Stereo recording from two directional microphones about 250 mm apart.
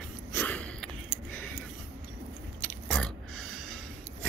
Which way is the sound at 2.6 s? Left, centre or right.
Centre.